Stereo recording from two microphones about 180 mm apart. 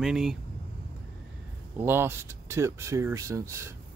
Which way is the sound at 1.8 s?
15° right (ahead or behind).